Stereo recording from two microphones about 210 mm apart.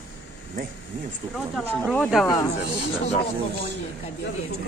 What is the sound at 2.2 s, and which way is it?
Speech, 15° left (ahead or behind).